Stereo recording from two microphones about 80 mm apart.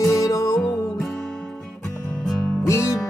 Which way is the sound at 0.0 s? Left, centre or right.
Left.